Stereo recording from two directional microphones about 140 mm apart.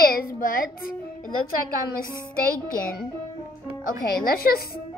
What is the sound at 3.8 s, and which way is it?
Speech, 90° left.